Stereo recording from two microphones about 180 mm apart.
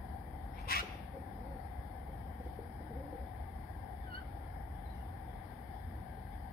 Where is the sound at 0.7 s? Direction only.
55° left (ahead or behind).